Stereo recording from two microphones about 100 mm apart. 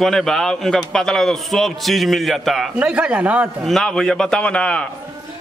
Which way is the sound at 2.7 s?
10° right (ahead or behind).